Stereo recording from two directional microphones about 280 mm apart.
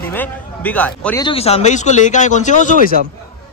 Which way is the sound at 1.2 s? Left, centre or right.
Left.